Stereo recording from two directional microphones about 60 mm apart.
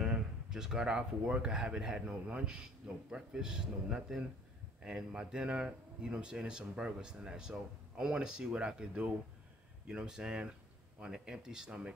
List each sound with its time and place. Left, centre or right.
0.0 s speech: centre